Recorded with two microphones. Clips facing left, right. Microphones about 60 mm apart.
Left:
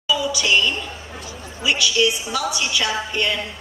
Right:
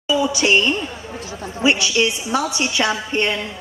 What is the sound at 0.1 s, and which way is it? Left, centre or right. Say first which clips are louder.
A woman's voice: right 3 dB; right.